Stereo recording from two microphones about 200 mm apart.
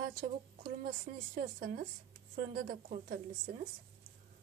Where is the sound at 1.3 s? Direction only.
50° right (ahead or behind).